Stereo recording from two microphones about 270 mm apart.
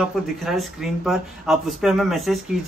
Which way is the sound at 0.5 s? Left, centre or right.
Centre.